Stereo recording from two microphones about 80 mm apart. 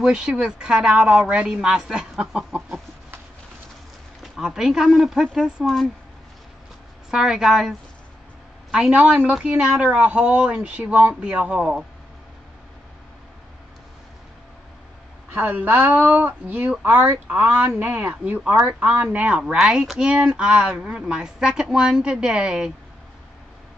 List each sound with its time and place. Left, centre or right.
0.0 s speech: centre
4.2 s speech: centre
7.1 s speech: centre
8.7 s speech: centre
15.3 s speech: right